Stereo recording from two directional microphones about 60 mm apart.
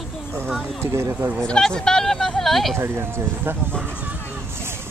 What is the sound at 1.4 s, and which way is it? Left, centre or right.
Speech, centre.